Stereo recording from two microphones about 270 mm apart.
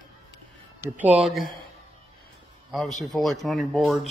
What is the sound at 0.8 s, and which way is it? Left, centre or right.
Speech, centre.